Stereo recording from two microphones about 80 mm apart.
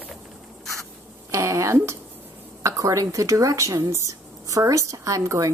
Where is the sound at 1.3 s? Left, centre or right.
Right.